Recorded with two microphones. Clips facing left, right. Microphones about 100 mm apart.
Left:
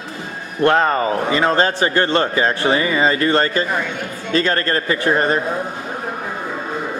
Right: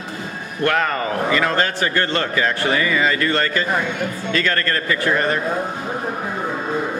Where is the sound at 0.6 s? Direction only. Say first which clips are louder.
Left 5 dB; 30° left (ahead or behind).